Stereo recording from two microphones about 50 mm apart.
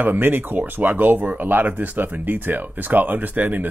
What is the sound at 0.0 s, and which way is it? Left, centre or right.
Speech, right.